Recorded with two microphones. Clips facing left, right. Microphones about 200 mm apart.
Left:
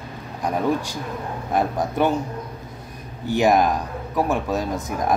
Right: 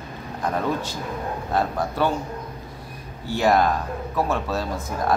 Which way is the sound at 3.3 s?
15° left (ahead or behind).